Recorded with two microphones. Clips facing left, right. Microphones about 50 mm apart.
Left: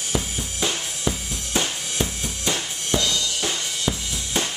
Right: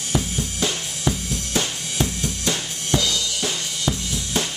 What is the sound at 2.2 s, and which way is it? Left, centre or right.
Drum kit, centre.